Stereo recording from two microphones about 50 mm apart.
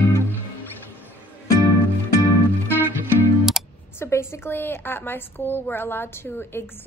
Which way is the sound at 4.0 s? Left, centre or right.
Left.